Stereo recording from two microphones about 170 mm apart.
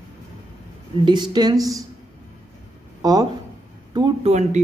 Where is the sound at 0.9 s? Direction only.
25° right (ahead or behind).